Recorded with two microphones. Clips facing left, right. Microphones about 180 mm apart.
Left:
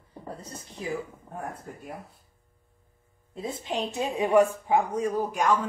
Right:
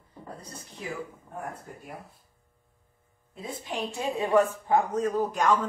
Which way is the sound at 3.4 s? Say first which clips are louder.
Left 3 dB; 25° left (ahead or behind).